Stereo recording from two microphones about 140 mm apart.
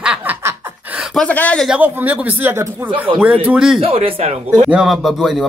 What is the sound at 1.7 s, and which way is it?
Speech, 10° right (ahead or behind).